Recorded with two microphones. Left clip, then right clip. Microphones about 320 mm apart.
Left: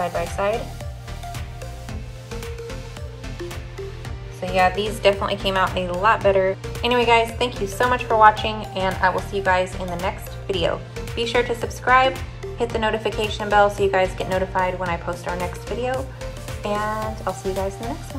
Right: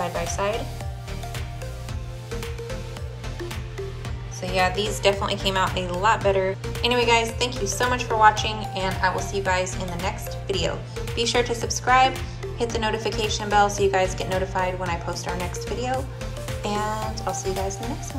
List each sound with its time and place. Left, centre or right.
0.0 s speech: centre
4.4 s a woman's voice: centre